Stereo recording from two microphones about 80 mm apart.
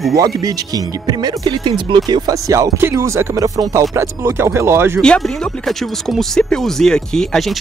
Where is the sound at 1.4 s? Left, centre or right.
Right.